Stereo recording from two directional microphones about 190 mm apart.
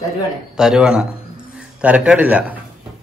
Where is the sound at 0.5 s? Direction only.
5° right (ahead or behind).